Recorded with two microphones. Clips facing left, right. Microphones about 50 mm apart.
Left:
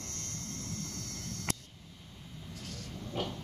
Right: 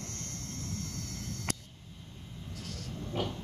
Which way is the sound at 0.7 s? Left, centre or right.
Left.